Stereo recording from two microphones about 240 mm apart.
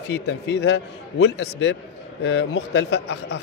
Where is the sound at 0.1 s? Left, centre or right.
Left.